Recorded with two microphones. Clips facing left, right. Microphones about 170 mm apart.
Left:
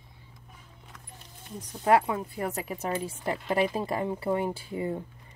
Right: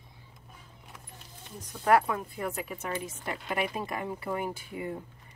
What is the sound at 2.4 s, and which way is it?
A woman's voice, 40° left (ahead or behind).